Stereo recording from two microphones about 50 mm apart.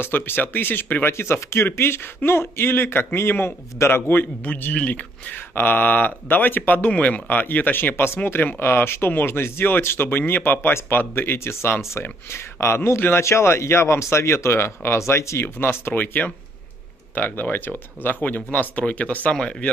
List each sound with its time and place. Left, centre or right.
0.0 s a man's voice: left
1.0 s a man's voice: left
4.7 s speech: left
5.5 s a man's voice: left
15.4 s a man's voice: left
19.3 s speech: centre